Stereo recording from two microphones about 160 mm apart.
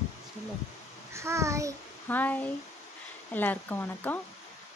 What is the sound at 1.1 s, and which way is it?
Speech, 15° right (ahead or behind).